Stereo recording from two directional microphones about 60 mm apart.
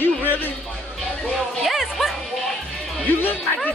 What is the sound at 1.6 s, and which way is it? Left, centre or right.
Music, centre.